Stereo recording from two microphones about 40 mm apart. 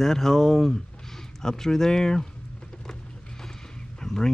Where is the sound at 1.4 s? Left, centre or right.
Centre.